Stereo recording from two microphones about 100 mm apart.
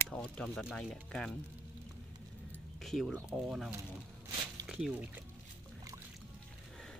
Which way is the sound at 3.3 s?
5° right (ahead or behind).